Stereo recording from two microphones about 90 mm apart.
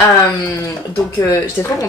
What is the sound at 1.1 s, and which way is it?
Speech, 30° left (ahead or behind).